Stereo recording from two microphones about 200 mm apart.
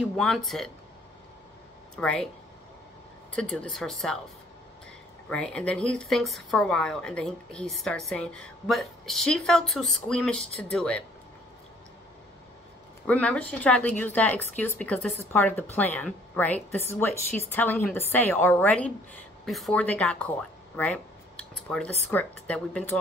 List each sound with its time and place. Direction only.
0.1 s speech: centre (ahead or behind)
2.0 s speech: 5° left (ahead or behind)
3.3 s speech: 5° left (ahead or behind)
5.3 s speech: 5° left (ahead or behind)
13.0 s speech: 5° left (ahead or behind)